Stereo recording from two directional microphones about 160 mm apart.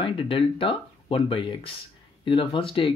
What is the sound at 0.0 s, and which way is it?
Speech, 35° left (ahead or behind).